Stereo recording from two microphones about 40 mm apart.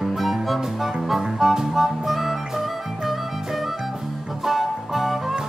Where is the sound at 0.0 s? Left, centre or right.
Centre.